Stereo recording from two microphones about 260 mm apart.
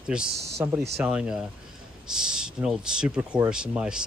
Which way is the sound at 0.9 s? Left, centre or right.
Centre.